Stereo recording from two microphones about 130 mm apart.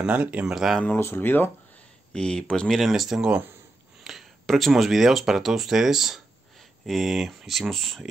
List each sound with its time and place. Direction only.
0.0 s speech: 10° right (ahead or behind)
0.8 s speech: 20° left (ahead or behind); by 8.1 s centre (ahead or behind)